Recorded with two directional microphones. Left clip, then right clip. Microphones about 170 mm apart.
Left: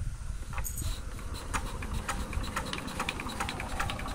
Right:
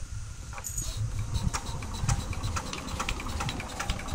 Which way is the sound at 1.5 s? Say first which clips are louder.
Left 2 dB; 5° right (ahead or behind).